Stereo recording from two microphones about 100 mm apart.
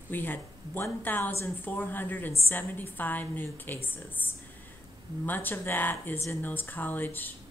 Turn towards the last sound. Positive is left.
turn(degrees=20)  # may be behind; listen again after turning